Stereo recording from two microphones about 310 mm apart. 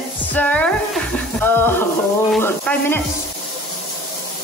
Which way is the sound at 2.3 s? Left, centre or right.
Centre.